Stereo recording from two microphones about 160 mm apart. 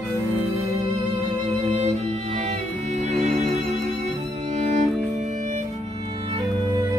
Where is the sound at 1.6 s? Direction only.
40° right (ahead or behind).